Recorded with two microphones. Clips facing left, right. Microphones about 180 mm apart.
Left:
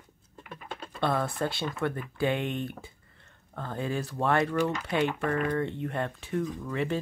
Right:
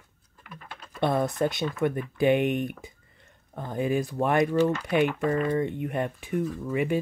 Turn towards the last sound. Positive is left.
turn(degrees=-15)  # may be behind; listen again after turning